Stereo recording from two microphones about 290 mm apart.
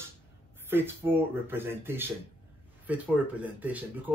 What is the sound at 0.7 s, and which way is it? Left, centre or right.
Speech, centre.